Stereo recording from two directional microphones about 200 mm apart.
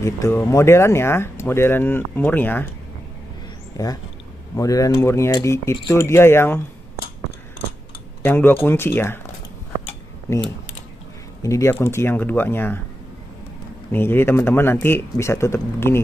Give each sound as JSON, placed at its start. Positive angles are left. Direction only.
{"t": 0.0, "sound": "speech", "side_deg": 15}
{"t": 3.7, "sound": "speech", "side_deg": 20}
{"t": 8.2, "sound": "speech", "side_deg": 10}
{"t": 11.4, "sound": "speech", "side_deg": 15}
{"t": 13.9, "sound": "speech", "side_deg": 10}